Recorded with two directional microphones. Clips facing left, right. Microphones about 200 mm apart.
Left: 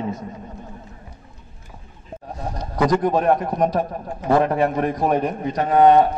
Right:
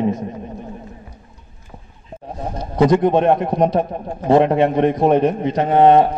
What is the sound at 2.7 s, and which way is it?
A man's voice, 25° right (ahead or behind).